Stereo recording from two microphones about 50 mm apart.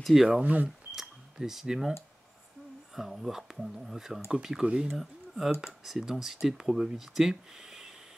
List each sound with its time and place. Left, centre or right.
0.0 s speech: centre
0.4 s speech: right
0.9 s cash register: centre
3.0 s speech: centre
4.9 s speech: centre